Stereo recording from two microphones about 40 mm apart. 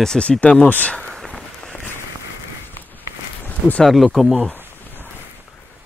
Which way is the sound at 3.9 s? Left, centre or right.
Centre.